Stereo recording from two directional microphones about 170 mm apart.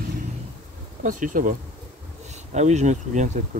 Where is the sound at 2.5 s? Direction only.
40° right (ahead or behind).